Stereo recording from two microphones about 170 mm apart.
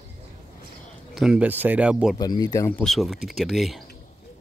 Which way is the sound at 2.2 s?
20° left (ahead or behind).